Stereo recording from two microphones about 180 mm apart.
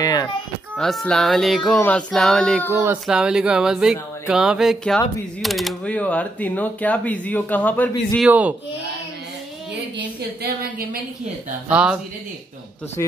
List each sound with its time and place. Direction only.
0.0 s a sound: 20° left (ahead or behind)
0.7 s speech: 5° left (ahead or behind)
2.7 s speech: 10° right (ahead or behind); by 8.3 s 10° left (ahead or behind)
8.3 s speech: 10° right (ahead or behind)
10.4 s a woman's voice: 55° right (ahead or behind)
11.7 s speech: 5° right (ahead or behind)